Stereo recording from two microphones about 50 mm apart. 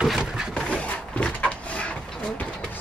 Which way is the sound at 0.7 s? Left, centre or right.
Left.